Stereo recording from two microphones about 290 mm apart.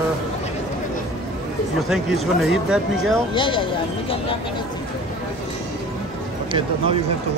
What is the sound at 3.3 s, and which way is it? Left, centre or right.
Speech, centre.